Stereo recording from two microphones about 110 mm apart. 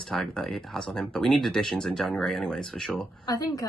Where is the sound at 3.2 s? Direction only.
35° left (ahead or behind).